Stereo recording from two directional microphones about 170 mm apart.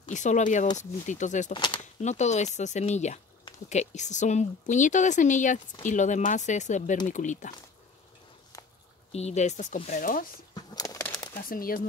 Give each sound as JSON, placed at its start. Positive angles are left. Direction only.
{"t": 0.1, "sound": "a woman's voice", "side_deg": 45}
{"t": 1.5, "sound": "speech", "side_deg": 30}
{"t": 1.8, "sound": "a woman's voice", "side_deg": 45}
{"t": 9.1, "sound": "speech", "side_deg": 40}
{"t": 10.5, "sound": "a sound", "side_deg": 20}
{"t": 11.3, "sound": "speech", "side_deg": 60}